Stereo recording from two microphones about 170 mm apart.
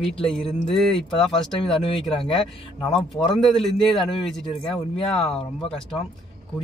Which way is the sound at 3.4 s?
Centre (ahead or behind).